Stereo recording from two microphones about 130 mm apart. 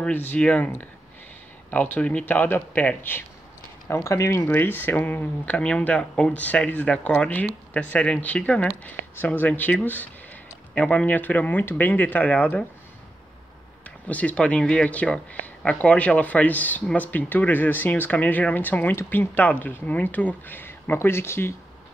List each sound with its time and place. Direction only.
0.0 s speech: 15° left (ahead or behind)
1.7 s speech: 15° left (ahead or behind)
14.0 s speech: 10° left (ahead or behind)